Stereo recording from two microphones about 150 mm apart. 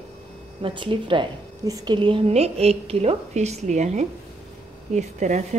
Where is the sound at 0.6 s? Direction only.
35° right (ahead or behind).